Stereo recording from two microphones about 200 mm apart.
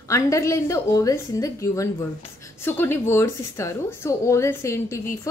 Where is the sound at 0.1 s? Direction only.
15° left (ahead or behind).